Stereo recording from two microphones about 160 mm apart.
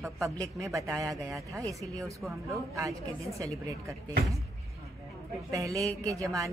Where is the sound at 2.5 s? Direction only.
20° right (ahead or behind).